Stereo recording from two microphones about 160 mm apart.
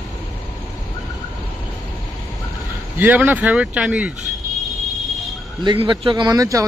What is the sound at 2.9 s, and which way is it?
Speech, 10° right (ahead or behind).